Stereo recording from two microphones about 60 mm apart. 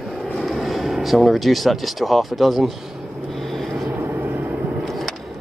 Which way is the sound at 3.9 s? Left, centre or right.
Right.